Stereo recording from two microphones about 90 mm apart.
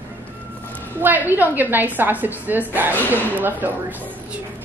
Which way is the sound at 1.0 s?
20° right (ahead or behind).